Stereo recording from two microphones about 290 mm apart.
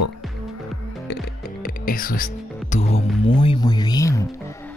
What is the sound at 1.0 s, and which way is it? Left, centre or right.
Speech, left.